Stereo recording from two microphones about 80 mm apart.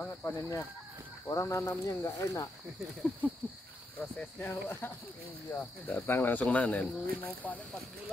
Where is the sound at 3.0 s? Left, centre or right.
Centre.